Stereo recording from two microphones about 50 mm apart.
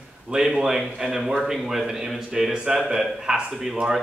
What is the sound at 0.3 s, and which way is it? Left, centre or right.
A man's voice, centre.